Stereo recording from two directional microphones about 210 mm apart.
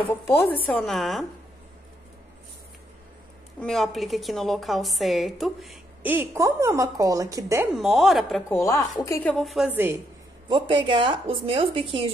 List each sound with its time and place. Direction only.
0.0 s a woman's voice: 10° left (ahead or behind)
3.6 s a woman's voice: centre (ahead or behind); by 7.6 s 15° right (ahead or behind)
7.7 s a woman's voice: centre (ahead or behind)
8.5 s a woman's voice: 15° left (ahead or behind); by 9.9 s 5° right (ahead or behind)
10.5 s a woman's voice: 25° right (ahead or behind)